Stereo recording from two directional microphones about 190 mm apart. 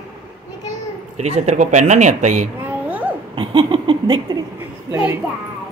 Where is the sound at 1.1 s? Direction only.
35° right (ahead or behind).